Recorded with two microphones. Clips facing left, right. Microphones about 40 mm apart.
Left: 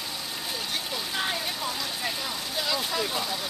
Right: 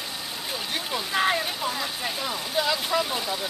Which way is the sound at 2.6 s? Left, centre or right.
Centre.